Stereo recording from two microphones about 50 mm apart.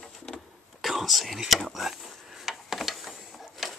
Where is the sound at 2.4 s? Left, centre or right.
Centre.